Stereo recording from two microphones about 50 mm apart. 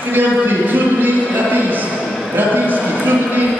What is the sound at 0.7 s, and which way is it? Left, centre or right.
Music, right.